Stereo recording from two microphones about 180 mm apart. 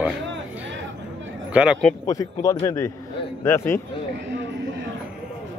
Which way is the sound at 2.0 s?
20° left (ahead or behind).